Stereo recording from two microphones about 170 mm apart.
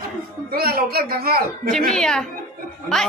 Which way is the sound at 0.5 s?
60° right (ahead or behind).